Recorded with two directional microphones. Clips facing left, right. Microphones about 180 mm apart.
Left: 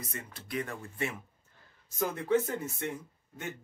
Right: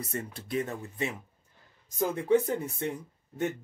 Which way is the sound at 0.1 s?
35° right (ahead or behind).